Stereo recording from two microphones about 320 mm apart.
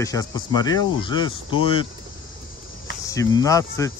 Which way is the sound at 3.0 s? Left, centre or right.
Centre.